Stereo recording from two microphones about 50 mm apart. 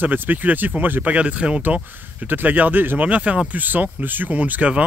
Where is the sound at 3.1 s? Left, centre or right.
Right.